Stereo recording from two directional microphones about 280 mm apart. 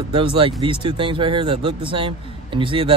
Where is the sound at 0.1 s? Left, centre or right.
Centre.